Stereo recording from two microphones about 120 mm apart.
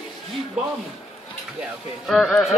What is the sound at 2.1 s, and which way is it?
Speech, centre (ahead or behind).